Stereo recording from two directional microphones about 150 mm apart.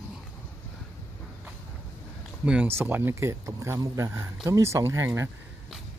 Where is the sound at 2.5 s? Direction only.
10° right (ahead or behind).